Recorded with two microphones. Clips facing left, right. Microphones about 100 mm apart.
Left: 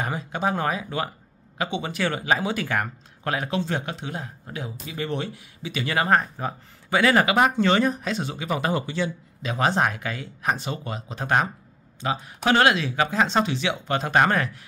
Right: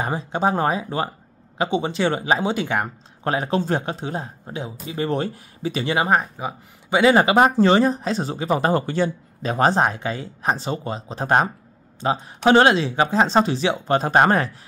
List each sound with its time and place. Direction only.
0.0 s speech: 30° right (ahead or behind)
5.9 s speech: 15° right (ahead or behind); by 14.6 s 30° right (ahead or behind)